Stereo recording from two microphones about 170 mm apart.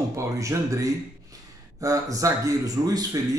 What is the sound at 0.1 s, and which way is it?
A man's voice, 20° right (ahead or behind).